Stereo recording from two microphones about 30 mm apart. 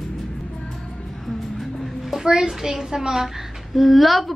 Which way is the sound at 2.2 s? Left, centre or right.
Centre.